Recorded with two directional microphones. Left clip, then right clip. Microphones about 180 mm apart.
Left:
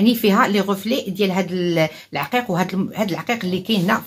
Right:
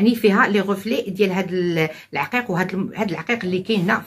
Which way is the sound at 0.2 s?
60° left (ahead or behind).